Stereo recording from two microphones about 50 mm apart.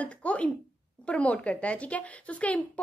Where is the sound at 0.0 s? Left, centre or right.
Left.